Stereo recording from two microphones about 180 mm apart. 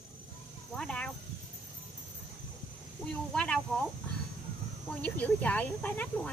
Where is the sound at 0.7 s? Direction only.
5° left (ahead or behind).